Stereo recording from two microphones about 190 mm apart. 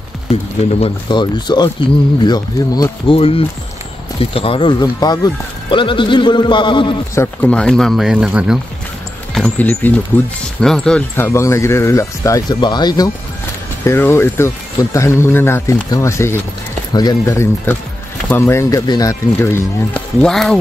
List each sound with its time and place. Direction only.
0.7 s speech: 25° left (ahead or behind)
7.2 s speech: 5° left (ahead or behind)